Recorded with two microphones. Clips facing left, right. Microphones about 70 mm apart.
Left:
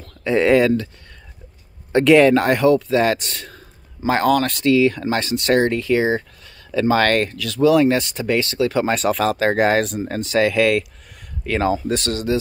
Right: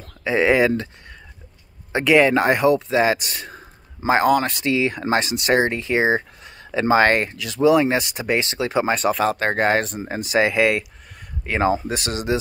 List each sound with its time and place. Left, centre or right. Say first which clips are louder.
0.2 s speech: left 2 dB; centre
1.9 s speech: left 4 dB; centre
3.5 s a sound: right 2 dB; centre
4.7 s speech: left 1 dB; right
8.8 s speech: left 1 dB; centre
10.0 s speech: left 1 dB; centre